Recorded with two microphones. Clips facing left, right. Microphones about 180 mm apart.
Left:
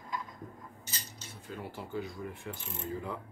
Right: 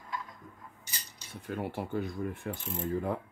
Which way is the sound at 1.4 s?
60° right (ahead or behind).